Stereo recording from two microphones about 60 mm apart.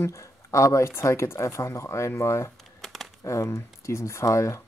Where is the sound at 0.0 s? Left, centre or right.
Left.